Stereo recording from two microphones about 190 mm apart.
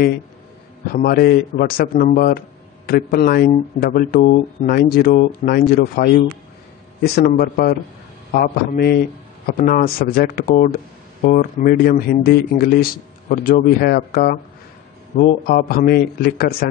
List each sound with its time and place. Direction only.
0.8 s a man's voice: 50° left (ahead or behind)
15.4 s speech: 50° left (ahead or behind)